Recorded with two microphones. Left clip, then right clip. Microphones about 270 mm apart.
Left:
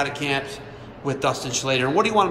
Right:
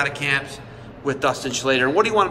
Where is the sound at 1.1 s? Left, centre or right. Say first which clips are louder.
Right 2 dB; centre.